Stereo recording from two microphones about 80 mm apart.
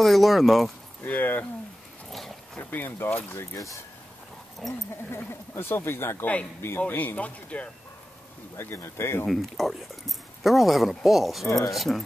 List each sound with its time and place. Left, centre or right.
0.0 s speech: centre
1.0 s speech: left
2.0 s a sound: centre
2.7 s speech: left
4.6 s speech: centre
5.1 s speech: left
8.5 s speech: left
9.3 s speech: centre